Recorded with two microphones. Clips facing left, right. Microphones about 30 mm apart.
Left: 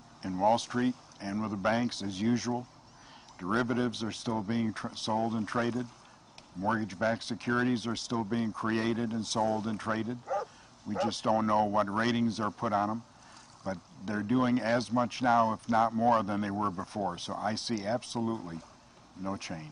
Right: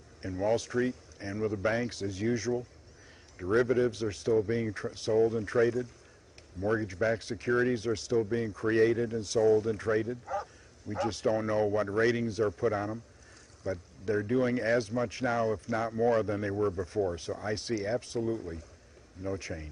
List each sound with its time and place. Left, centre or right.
0.3 s a man's voice: centre
1.6 s speech: left
2.5 s speech: left
3.3 s a man's voice: centre
4.3 s a man's voice: centre
10.2 s bow-wow: centre
11.0 s speech: left